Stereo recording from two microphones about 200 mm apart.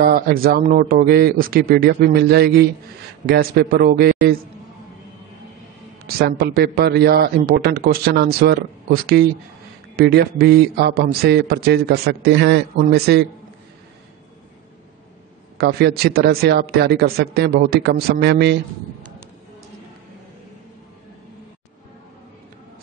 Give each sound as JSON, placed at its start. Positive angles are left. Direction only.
{"t": 0.0, "sound": "a man's voice", "side_deg": -45}
{"t": 6.0, "sound": "a man's voice", "side_deg": -50}
{"t": 15.5, "sound": "a man's voice", "side_deg": -55}